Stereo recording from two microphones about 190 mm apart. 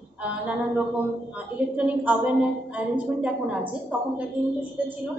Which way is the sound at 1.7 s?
5° right (ahead or behind).